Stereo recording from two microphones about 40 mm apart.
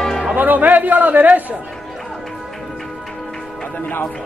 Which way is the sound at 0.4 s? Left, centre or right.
Right.